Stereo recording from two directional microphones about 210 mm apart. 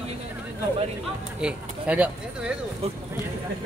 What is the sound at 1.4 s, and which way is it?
Speech, 5° right (ahead or behind).